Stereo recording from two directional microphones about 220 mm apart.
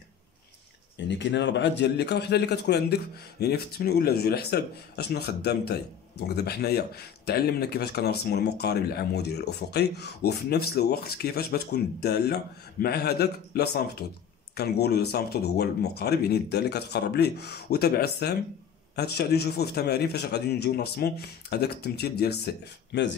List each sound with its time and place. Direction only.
0.9 s a man's voice: 55° left (ahead or behind)